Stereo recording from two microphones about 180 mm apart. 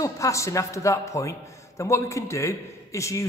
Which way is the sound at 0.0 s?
15° left (ahead or behind).